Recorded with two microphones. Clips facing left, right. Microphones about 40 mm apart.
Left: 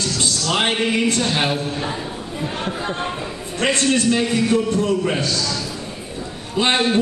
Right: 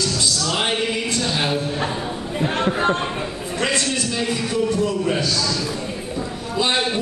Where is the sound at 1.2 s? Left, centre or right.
Left.